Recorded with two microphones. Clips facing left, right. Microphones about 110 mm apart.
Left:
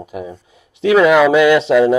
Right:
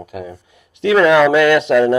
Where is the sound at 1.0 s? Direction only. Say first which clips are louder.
Left 1 dB; 5° left (ahead or behind).